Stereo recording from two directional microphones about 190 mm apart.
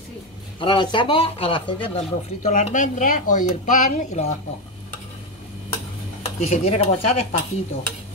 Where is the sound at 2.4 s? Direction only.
40° left (ahead or behind).